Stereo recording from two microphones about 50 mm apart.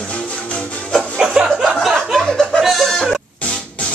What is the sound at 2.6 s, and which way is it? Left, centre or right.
Music, centre.